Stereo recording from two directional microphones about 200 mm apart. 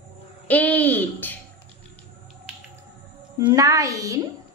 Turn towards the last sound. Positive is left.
turn(degrees=-15)  # may be behind; listen again after turning